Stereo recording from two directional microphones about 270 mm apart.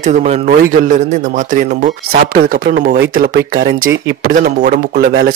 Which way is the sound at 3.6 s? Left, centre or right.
Right.